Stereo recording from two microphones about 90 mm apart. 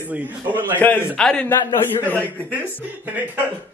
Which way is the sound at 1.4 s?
25° left (ahead or behind).